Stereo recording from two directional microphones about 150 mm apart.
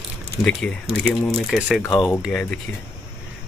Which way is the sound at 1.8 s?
20° left (ahead or behind).